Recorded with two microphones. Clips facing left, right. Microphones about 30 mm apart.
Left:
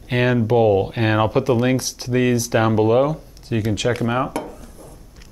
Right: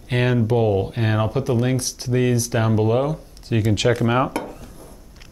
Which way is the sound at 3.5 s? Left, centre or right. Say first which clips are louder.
Right 1 dB; centre.